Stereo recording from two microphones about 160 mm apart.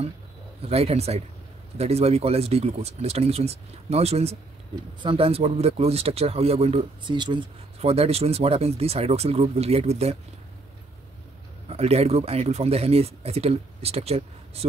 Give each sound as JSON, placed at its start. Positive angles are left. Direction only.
{"t": 0.6, "sound": "speech", "side_deg": -40}
{"t": 11.7, "sound": "speech", "side_deg": -40}